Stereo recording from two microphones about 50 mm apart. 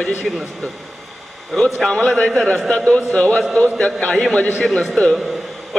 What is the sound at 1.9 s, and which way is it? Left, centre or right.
A man's voice, left.